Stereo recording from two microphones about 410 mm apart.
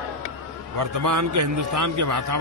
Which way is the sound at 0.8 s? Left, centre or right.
Right.